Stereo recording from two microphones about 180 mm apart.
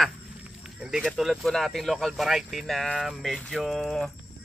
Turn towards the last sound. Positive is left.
turn(degrees=5)  # may be behind; listen again after turning